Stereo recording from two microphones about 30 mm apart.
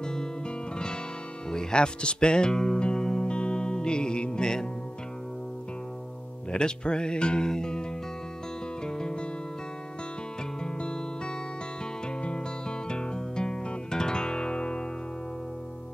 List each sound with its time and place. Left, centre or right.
0.0 s music: left
1.5 s music: left
6.5 s music: left
8.8 s music: left
10.6 s music: left